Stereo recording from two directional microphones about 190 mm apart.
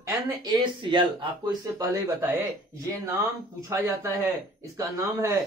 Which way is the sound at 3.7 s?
15° right (ahead or behind).